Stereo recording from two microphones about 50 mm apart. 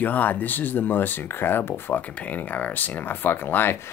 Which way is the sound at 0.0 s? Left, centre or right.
Left.